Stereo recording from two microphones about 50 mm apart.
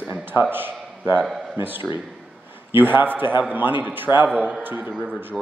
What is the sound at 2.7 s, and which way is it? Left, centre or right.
A man's voice, right.